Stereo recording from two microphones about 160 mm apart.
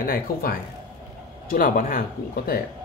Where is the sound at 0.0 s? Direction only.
65° left (ahead or behind).